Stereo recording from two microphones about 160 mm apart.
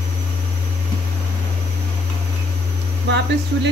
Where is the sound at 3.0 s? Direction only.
90° right.